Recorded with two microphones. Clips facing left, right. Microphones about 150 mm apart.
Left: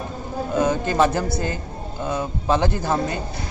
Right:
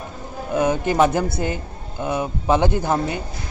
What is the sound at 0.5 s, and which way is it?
Speech, 15° right (ahead or behind).